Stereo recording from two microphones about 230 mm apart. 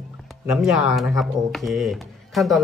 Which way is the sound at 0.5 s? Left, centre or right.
Centre.